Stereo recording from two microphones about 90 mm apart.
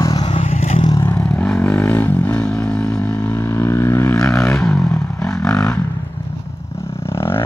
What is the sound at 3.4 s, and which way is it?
Vehicle, 30° left (ahead or behind).